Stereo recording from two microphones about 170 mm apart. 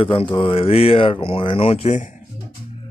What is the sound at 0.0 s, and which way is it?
Speech, 30° left (ahead or behind).